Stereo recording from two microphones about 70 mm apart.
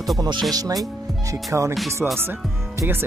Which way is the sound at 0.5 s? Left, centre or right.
Right.